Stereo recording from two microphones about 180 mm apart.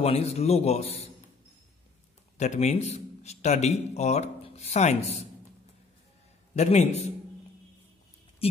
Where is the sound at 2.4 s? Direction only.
40° left (ahead or behind).